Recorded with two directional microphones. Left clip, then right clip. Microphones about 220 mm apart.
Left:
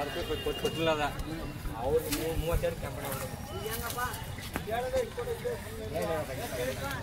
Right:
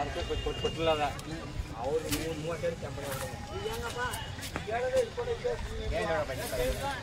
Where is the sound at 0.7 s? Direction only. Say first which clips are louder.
Right 2 dB; 50° left (ahead or behind).